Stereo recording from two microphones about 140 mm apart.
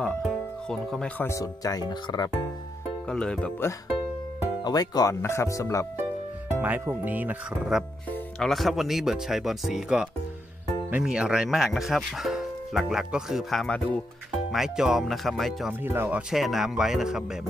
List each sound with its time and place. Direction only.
0.0 s speech: 5° left (ahead or behind); by 2.3 s 30° left (ahead or behind)
3.1 s speech: 5° left (ahead or behind)
4.6 s speech: 25° left (ahead or behind)
6.6 s speech: 10° right (ahead or behind)
8.1 s speech: 5° left (ahead or behind)
15.8 s speech: 15° right (ahead or behind)